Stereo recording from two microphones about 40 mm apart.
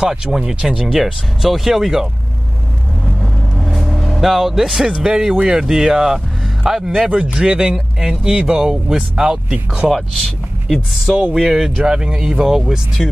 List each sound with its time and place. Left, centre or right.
0.0 s speech: centre
0.7 s speech: centre
3.7 s vehicle: centre
4.9 s speech: right
5.6 s speech: centre
7.4 s speech: right
9.8 s speech: centre
11.1 s speech: centre
13.0 s speech: centre